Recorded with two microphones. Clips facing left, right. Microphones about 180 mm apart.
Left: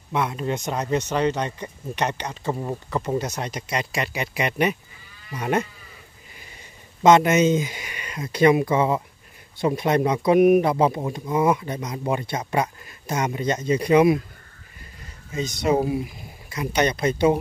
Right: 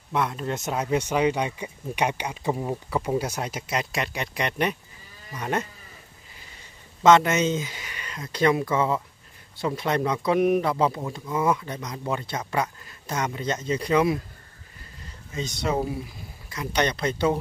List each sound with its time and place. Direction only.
0.1 s speech: 5° left (ahead or behind)
7.0 s speech: 15° left (ahead or behind)
15.3 s speech: 15° left (ahead or behind)